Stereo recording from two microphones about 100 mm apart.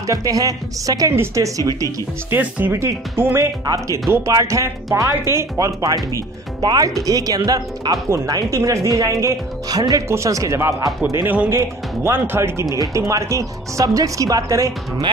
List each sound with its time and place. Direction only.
0.0 s speech: 35° right (ahead or behind)
2.3 s speech: 25° right (ahead or behind)